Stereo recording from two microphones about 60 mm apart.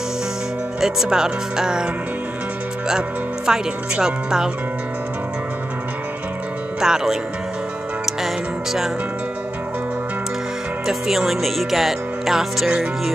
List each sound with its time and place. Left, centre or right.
0.7 s speech: centre
3.4 s speech: centre
6.8 s speech: centre
10.9 s speech: centre